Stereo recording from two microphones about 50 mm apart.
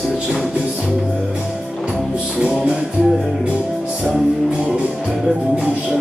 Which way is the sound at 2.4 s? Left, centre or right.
Centre.